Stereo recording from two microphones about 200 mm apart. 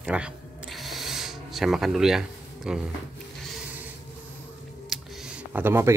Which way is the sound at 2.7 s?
5° right (ahead or behind).